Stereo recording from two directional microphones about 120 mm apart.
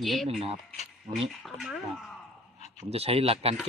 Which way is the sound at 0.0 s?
Centre (ahead or behind).